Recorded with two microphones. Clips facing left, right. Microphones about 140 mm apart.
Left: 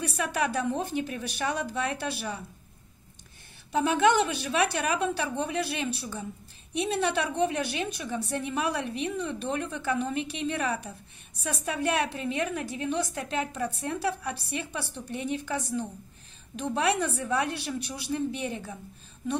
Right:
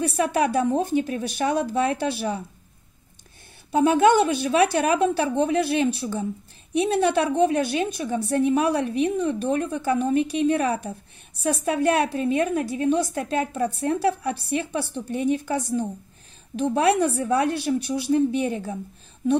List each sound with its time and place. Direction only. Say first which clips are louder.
0.7 s a woman's voice: right 7 dB; 45° right (ahead or behind)
3.7 s a woman's voice: right 6 dB; 40° right (ahead or behind)